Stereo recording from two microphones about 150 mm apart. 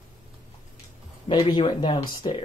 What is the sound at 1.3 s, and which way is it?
Speech, 30° left (ahead or behind).